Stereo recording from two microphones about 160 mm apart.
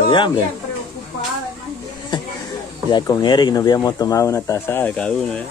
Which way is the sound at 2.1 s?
30° left (ahead or behind).